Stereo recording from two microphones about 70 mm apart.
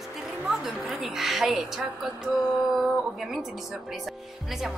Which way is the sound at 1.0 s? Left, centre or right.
Centre.